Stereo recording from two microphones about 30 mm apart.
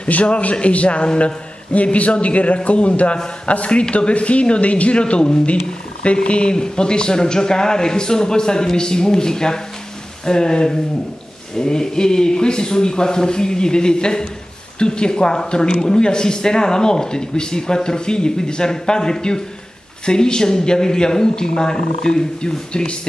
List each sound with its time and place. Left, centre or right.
0.1 s a man's voice: left
6.5 s speech: left